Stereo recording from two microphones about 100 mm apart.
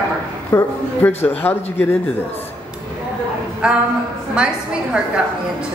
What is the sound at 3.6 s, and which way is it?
A woman's voice, 10° right (ahead or behind).